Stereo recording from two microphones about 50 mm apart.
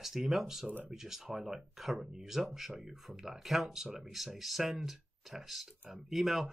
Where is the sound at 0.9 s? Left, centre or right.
Centre.